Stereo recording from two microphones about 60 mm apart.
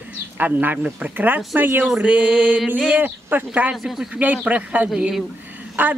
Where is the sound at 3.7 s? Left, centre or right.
Centre.